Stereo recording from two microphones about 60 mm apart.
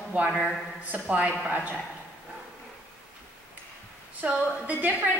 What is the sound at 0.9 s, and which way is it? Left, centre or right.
Speech, right.